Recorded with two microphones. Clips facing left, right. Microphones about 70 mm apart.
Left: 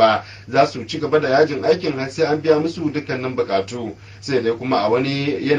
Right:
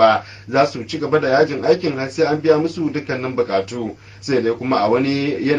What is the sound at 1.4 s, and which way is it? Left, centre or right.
Speech, centre.